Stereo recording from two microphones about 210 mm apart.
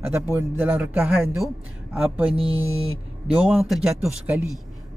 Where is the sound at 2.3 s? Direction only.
25° right (ahead or behind).